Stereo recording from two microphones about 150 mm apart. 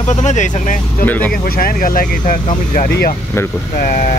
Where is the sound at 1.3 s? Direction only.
75° left (ahead or behind).